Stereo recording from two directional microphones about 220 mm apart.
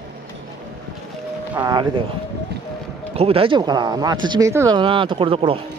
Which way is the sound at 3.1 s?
25° right (ahead or behind).